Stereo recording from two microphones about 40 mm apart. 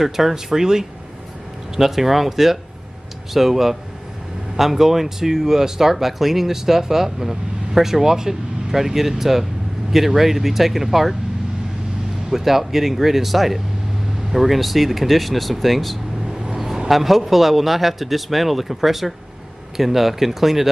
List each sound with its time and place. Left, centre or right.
0.0 s a man's voice: centre
12.3 s a man's voice: centre
16.5 s a man's voice: centre